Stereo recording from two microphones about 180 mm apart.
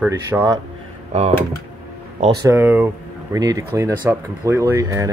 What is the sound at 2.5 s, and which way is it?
Speech, 10° right (ahead or behind).